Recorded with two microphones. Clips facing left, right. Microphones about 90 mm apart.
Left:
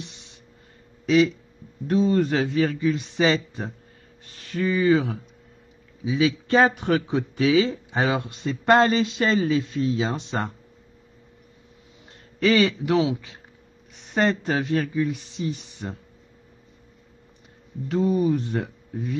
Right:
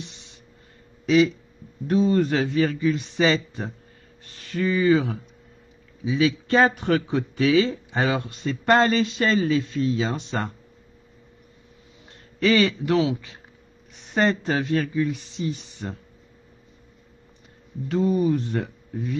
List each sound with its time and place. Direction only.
1.0 s speech: centre (ahead or behind); by 10.5 s 15° left (ahead or behind)
12.4 s speech: centre (ahead or behind)
17.8 s speech: centre (ahead or behind)